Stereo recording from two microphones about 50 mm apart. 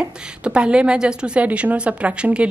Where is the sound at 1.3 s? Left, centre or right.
Right.